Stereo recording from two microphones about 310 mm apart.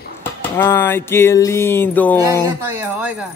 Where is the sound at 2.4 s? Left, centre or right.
Centre.